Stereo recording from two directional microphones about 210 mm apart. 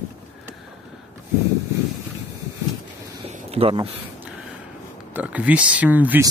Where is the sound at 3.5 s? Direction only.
25° right (ahead or behind).